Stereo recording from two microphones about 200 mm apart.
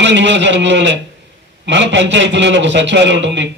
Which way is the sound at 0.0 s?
65° right (ahead or behind).